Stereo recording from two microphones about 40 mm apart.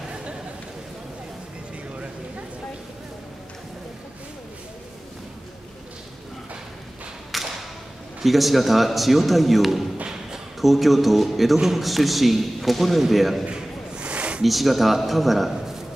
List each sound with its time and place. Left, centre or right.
0.1 s chatter: right
7.3 s thump: centre
8.2 s speech: centre
13.5 s a sound: right
14.4 s speech: centre